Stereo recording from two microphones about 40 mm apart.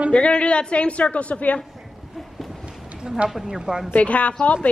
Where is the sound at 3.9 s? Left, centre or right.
Left.